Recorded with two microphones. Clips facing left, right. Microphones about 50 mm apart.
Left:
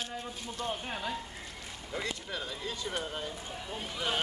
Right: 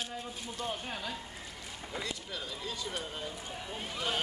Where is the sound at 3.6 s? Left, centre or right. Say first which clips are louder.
Left 1 dB; centre.